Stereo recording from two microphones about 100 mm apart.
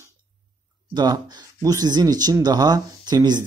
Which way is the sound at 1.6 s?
35° right (ahead or behind).